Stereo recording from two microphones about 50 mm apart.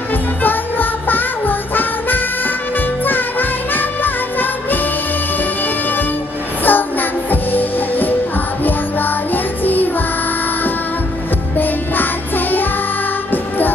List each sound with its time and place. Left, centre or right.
0.4 s music: left
6.6 s music: left
11.5 s music: left